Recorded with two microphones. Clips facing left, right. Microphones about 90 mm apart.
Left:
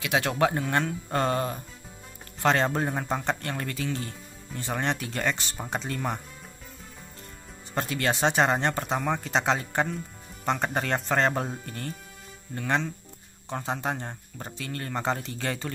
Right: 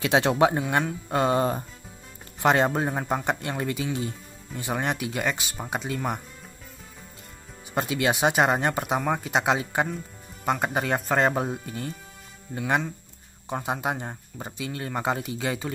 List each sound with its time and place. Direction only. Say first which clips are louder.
0.0 s speech: right 4 dB; 25° right (ahead or behind); by 1.4 s 10° right (ahead or behind)
2.4 s speech: right 2 dB; 15° right (ahead or behind)
7.7 s speech: right 3 dB; 10° right (ahead or behind)